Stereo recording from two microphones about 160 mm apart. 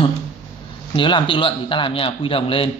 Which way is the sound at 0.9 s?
30° left (ahead or behind).